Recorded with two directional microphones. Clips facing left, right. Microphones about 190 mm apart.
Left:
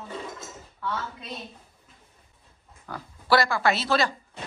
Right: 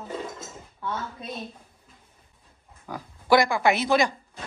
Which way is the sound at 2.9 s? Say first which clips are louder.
Right 3 dB; 15° right (ahead or behind).